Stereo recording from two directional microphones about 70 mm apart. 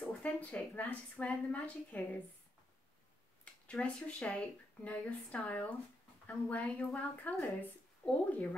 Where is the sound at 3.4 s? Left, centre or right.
Centre.